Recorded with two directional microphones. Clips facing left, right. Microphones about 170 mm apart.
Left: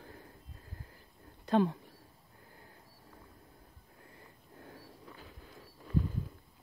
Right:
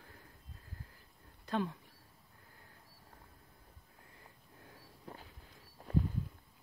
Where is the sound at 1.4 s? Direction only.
30° left (ahead or behind).